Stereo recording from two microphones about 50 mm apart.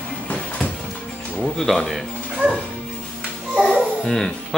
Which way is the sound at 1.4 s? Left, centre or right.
Centre.